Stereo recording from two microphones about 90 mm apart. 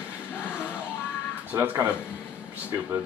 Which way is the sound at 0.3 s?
25° left (ahead or behind).